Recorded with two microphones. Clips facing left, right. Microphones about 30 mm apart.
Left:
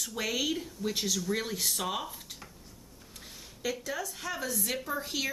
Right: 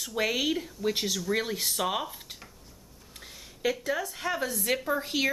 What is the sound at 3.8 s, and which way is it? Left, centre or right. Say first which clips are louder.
A woman's voice: right 5 dB; right.